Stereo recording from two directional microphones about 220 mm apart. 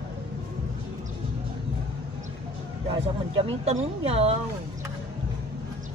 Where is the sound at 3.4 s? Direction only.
30° right (ahead or behind).